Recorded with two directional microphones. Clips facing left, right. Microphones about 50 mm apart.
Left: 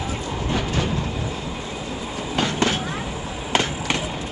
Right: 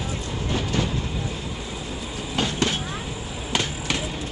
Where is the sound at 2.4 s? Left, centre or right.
Left.